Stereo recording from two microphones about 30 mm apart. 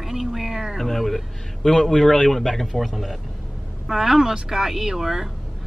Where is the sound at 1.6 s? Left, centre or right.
Centre.